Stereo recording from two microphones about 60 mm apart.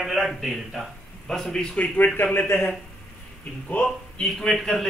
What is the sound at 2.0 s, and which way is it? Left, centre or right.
Speech, left.